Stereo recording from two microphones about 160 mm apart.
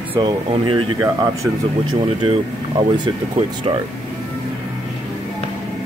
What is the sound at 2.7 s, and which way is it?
Speech, 25° right (ahead or behind).